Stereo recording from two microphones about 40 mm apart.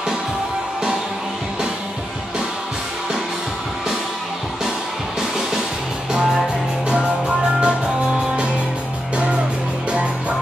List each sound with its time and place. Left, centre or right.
6.9 s music: right
9.1 s music: right